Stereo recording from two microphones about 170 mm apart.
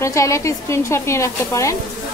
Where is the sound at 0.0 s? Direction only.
15° left (ahead or behind).